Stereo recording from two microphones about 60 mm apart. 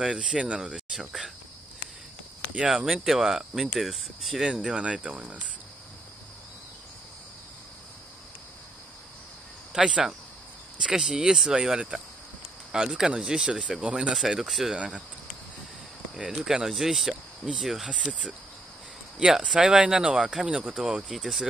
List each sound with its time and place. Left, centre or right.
0.0 s speech: centre
2.7 s speech: centre
9.7 s speech: centre
14.8 s speech: centre
16.2 s speech: centre
19.1 s speech: centre